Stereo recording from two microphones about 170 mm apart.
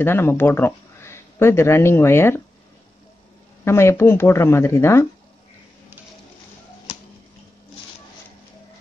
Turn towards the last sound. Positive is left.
turn(degrees=35)  # may be behind; listen again after turning